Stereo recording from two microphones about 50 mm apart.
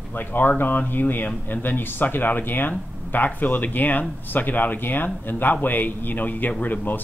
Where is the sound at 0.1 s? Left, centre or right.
Left.